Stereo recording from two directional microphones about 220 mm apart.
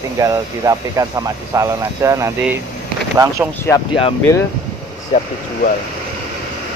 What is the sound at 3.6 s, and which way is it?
Speech, 20° left (ahead or behind).